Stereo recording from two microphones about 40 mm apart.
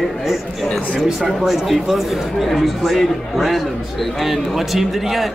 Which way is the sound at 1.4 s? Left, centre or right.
Centre.